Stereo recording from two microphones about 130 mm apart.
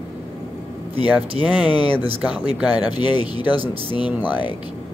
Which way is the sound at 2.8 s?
35° left (ahead or behind).